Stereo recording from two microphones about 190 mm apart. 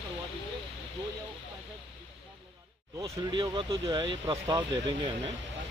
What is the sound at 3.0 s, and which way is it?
Speech, 25° right (ahead or behind).